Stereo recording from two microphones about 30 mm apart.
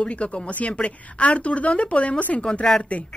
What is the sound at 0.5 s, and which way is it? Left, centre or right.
Speech, left.